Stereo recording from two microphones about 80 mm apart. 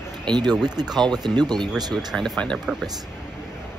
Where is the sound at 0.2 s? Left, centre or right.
Right.